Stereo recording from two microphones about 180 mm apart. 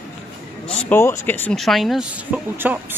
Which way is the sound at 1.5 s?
Centre (ahead or behind).